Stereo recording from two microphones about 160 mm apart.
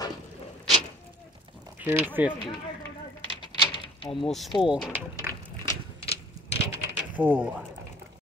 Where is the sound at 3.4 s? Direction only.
30° left (ahead or behind).